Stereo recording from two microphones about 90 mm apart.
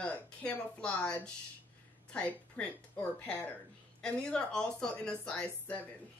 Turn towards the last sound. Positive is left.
turn(degrees=15)  # may be behind; listen again after turning